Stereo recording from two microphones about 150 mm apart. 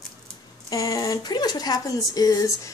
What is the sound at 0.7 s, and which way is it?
Speech, 25° left (ahead or behind).